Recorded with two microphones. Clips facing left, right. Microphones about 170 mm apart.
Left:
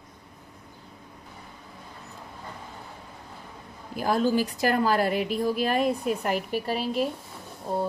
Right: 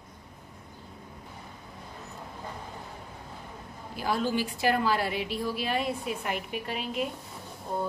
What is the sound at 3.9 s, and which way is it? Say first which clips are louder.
A woman's voice: left 5 dB; 45° left (ahead or behind).